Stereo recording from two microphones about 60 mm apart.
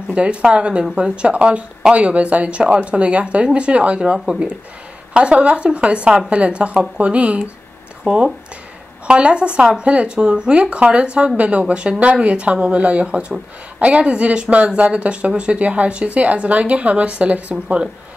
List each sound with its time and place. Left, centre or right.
0.1 s speech: centre